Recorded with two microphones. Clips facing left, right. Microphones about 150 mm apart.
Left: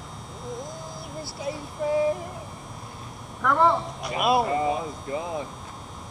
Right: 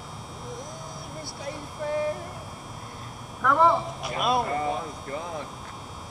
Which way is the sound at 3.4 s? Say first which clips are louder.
Even; centre (ahead or behind).